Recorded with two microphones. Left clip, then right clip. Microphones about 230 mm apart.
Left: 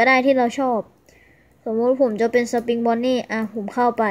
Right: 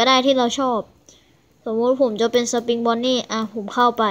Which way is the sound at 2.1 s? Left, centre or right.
Left.